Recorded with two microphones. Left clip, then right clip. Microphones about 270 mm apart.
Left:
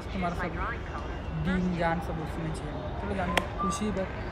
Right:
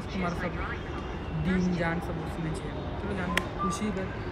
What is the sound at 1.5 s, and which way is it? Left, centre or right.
Speech, centre.